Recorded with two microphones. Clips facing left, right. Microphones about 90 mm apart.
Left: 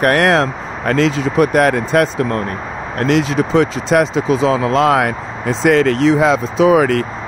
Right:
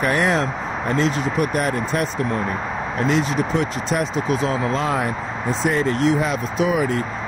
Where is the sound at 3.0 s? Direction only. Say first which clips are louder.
Left 6 dB; 70° left (ahead or behind).